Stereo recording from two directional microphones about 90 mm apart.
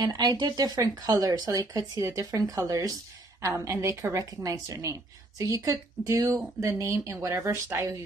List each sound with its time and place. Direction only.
0.0 s speech: 50° right (ahead or behind); by 8.0 s 30° right (ahead or behind)